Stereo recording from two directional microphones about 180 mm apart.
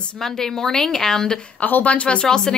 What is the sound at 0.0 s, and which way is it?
A woman's voice, 5° left (ahead or behind).